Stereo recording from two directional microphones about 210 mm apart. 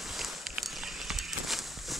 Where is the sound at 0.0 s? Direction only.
Centre (ahead or behind).